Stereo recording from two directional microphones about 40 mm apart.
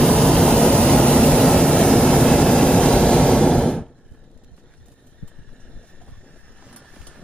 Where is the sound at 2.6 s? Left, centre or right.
Left.